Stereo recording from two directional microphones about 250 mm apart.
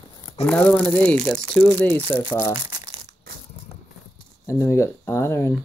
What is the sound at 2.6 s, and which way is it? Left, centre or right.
Crumpling, centre.